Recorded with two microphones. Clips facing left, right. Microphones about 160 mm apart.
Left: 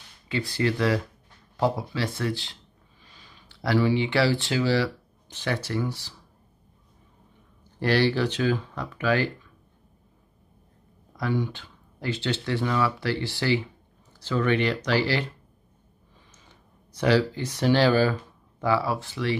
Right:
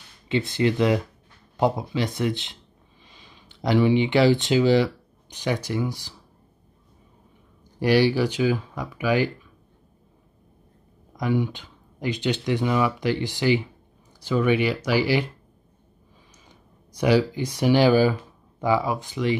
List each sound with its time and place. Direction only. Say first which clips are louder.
0.3 s speech: right 4 dB; 20° right (ahead or behind)
7.8 s speech: right 3 dB; 10° right (ahead or behind)
11.1 s speech: right 3 dB; 15° right (ahead or behind)
16.4 s speech: right 3 dB; 15° right (ahead or behind)